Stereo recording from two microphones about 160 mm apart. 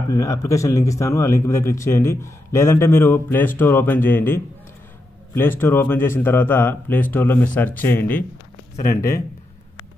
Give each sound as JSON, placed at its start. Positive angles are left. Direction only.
{"t": 0.1, "sound": "speech", "side_deg": 20}